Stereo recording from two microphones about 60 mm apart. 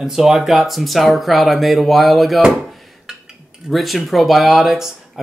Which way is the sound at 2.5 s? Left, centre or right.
Centre.